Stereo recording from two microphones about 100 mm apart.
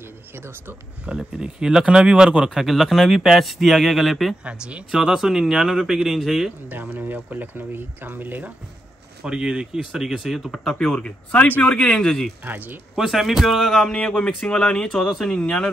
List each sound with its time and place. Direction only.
1.0 s speech: 10° right (ahead or behind)
4.5 s speech: 10° right (ahead or behind)
6.7 s speech: 20° right (ahead or behind)
9.2 s speech: 10° right (ahead or behind)
12.4 s speech: 20° right (ahead or behind)
12.9 s speech: 5° right (ahead or behind)